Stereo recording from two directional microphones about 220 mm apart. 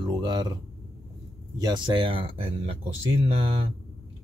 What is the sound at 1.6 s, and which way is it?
Speech, 20° right (ahead or behind).